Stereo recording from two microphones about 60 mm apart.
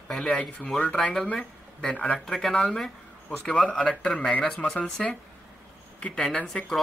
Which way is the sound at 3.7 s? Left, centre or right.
Centre.